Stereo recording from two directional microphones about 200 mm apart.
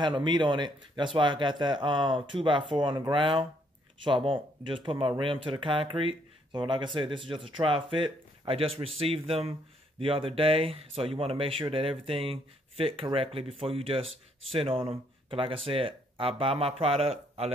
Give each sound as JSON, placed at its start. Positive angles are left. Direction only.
{"t": 0.0, "sound": "speech", "side_deg": -20}